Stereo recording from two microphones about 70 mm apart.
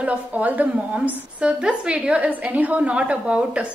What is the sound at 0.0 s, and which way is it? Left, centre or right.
A woman's voice, right.